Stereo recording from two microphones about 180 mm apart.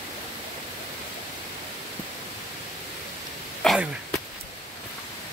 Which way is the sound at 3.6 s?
Centre (ahead or behind).